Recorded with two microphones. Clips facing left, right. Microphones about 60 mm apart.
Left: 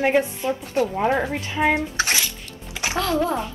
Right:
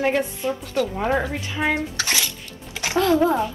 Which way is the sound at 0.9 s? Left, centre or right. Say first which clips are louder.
Left 1 dB; centre.